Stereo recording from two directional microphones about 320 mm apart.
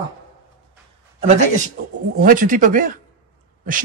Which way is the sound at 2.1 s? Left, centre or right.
Right.